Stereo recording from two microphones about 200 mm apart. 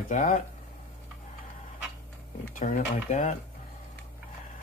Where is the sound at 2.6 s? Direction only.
40° left (ahead or behind).